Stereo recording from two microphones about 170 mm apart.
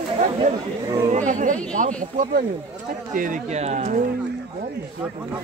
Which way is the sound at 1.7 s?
50° right (ahead or behind).